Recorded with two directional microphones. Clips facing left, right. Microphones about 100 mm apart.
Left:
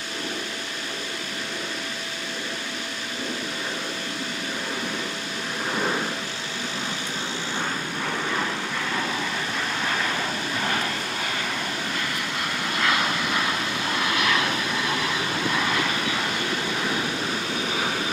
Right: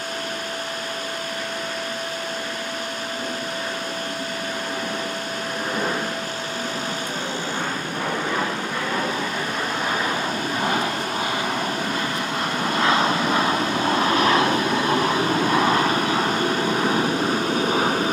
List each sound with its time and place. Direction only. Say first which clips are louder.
10.6 s vehicle: right 4 dB; 20° right (ahead or behind)
12.6 s vehicle: right 5 dB; 30° right (ahead or behind)